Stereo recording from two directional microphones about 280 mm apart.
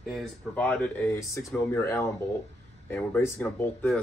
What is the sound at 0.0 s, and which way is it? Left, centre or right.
Speech, centre.